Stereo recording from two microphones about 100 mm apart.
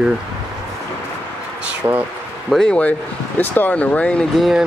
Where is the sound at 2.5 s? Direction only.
10° left (ahead or behind).